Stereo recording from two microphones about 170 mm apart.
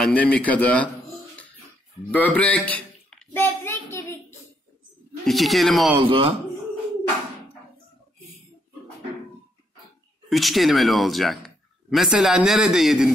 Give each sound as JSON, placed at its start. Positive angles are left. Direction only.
{"t": 0.0, "sound": "a man's voice", "side_deg": 10}
{"t": 2.0, "sound": "a child's voice", "side_deg": 10}
{"t": 5.2, "sound": "speech", "side_deg": 0}
{"t": 5.9, "sound": "a man's voice", "side_deg": -30}
{"t": 10.3, "sound": "speech", "side_deg": 0}